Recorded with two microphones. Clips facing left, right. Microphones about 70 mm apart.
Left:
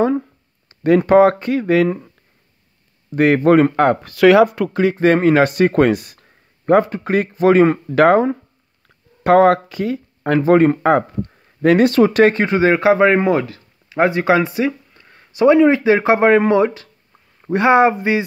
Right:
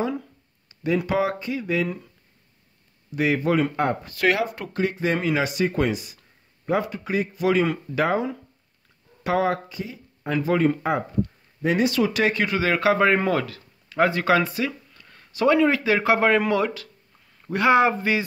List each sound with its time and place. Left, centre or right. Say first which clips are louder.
0.8 s speech: left 12 dB; left
3.1 s speech: left 9 dB; left
5.0 s speech: left 12 dB; left
10.4 s speech: left 9 dB; left